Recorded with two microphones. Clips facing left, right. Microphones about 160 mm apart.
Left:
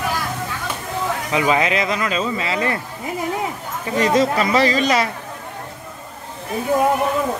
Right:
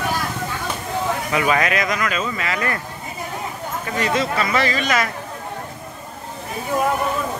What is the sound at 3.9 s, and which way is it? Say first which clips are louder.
Speech: left 5 dB; 35° left (ahead or behind).